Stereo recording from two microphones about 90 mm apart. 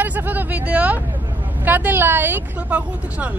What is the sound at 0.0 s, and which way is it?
Speech, 20° right (ahead or behind).